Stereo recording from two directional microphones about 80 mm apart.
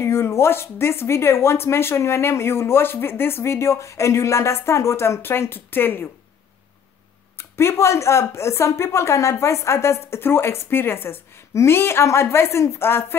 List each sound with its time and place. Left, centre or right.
0.0 s speech: left
7.3 s speech: left